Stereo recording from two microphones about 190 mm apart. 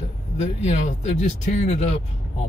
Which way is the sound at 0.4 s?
35° left (ahead or behind).